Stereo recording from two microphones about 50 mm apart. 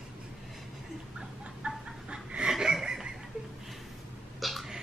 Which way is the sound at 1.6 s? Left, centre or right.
Centre.